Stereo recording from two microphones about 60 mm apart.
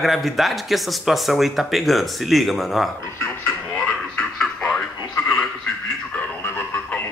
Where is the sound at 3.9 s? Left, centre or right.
Centre.